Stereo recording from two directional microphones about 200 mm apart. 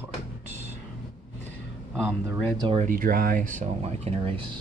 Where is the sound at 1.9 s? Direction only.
Centre (ahead or behind).